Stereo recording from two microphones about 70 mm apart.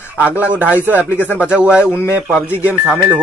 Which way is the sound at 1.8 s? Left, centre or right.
Left.